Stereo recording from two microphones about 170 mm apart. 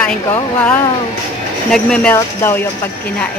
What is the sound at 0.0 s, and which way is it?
Speech, 10° left (ahead or behind).